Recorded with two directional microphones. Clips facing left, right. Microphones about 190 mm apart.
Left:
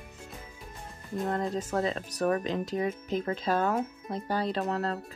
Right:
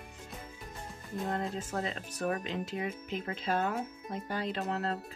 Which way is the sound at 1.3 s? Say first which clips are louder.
Left 6 dB; 40° left (ahead or behind).